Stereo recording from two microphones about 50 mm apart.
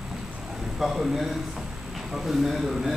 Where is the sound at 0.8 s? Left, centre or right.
Centre.